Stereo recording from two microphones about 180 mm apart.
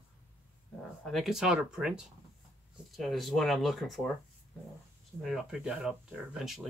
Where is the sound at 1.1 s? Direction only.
Centre (ahead or behind).